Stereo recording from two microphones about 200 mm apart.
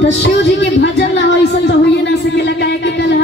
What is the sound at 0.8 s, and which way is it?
A woman's voice, 60° left (ahead or behind).